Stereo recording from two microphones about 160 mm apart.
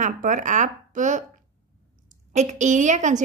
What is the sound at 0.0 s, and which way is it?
Speech, 55° right (ahead or behind).